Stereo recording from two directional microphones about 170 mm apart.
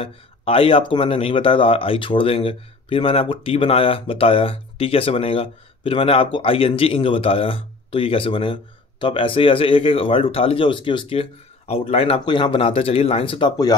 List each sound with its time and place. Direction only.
0.0 s speech: 35° left (ahead or behind)